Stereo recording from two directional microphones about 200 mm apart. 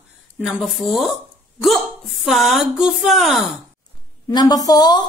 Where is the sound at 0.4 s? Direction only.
Centre (ahead or behind).